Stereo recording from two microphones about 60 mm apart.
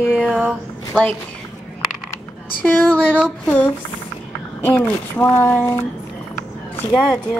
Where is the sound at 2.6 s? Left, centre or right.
Left.